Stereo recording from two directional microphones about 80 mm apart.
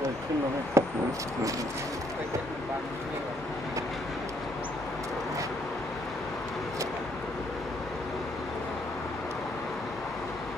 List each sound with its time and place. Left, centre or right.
0.8 s speech: right